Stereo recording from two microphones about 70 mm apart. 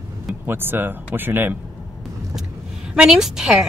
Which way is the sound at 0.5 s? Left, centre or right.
Right.